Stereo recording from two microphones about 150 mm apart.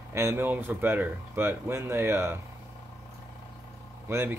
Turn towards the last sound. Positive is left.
turn(degrees=-15)  # may be behind; listen again after turning